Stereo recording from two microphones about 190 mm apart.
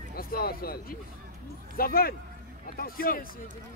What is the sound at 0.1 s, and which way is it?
Speech, 50° left (ahead or behind).